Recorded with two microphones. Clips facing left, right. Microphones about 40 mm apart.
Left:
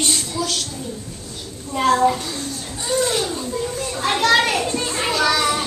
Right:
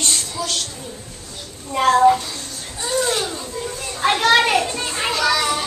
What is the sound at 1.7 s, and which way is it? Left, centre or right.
Speech, right.